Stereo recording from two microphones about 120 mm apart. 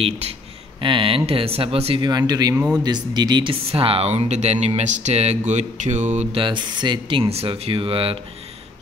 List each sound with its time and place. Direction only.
0.7 s speech: 45° right (ahead or behind)
2.0 s speech: 35° right (ahead or behind)
2.5 s speech: 10° right (ahead or behind)
2.8 s speech: 35° right (ahead or behind); by 5.4 s 65° right (ahead or behind)
5.5 s mantra: 75° right (ahead or behind)
6.3 s speech: 40° right (ahead or behind)